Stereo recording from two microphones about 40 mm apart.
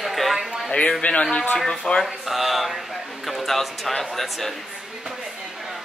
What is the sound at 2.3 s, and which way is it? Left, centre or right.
Speech, centre.